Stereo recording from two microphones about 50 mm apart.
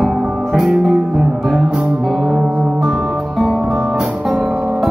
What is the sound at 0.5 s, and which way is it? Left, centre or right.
Music, centre.